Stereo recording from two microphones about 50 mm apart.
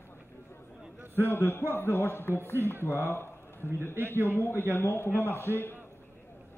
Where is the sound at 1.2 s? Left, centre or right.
Left.